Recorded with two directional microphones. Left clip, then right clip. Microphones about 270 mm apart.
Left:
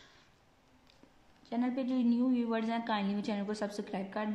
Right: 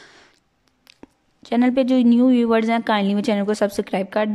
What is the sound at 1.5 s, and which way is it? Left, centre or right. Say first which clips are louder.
A woman's voice: right 17 dB; right.